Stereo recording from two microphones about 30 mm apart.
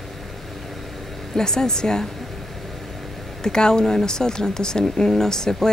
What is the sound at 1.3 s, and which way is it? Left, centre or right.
Speech, left.